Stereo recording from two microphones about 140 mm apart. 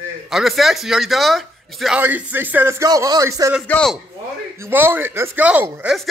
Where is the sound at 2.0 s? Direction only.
10° right (ahead or behind).